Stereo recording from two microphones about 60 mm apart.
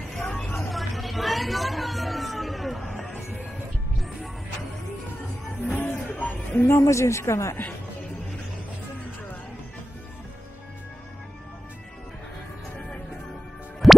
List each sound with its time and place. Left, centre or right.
0.1 s vehicle: centre
0.7 s a sound: centre
5.8 s music: left
6.7 s speech: left
13.8 s music: centre